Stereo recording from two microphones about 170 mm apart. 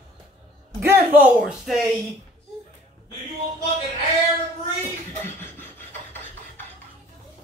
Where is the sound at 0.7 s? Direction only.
10° right (ahead or behind).